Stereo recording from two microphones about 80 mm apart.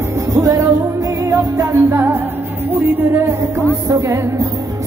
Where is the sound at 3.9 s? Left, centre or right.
Right.